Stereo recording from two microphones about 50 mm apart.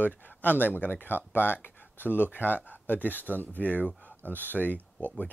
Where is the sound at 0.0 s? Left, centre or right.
Left.